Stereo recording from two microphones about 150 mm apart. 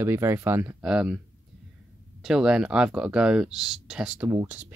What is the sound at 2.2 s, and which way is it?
Speech, 5° right (ahead or behind).